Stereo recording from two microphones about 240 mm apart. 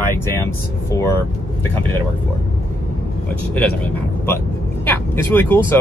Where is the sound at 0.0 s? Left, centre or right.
Centre.